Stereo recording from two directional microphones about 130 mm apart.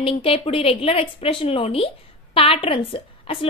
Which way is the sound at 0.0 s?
45° left (ahead or behind).